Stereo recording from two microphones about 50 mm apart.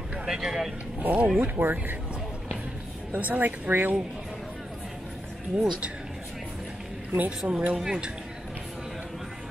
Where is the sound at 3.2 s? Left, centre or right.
Right.